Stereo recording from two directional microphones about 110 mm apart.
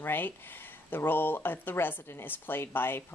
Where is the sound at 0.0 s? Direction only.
20° left (ahead or behind).